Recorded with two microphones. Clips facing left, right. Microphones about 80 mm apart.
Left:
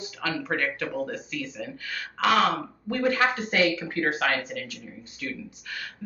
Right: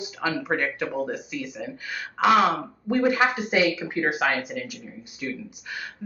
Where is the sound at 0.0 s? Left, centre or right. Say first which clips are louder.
Right 3 dB; centre.